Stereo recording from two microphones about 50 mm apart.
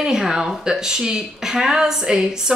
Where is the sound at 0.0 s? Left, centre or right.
Centre.